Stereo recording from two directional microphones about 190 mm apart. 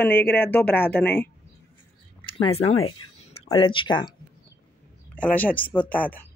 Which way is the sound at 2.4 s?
30° left (ahead or behind).